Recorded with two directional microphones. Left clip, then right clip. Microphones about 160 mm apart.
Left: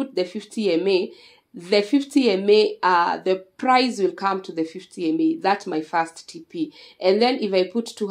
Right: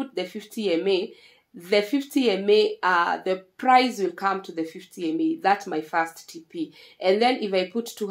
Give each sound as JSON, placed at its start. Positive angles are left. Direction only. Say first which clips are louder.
{"t": 0.0, "sound": "speech", "louder": "left 5 dB", "side_deg": 35}